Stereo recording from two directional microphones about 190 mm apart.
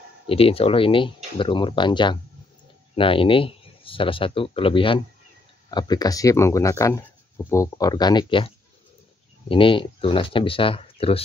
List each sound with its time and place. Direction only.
0.3 s speech: 30° left (ahead or behind)